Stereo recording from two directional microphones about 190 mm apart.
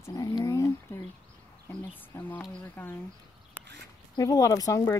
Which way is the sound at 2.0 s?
10° left (ahead or behind).